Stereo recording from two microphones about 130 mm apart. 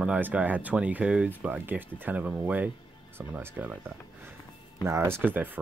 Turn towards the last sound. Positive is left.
turn(degrees=-15)  # may be behind; listen again after turning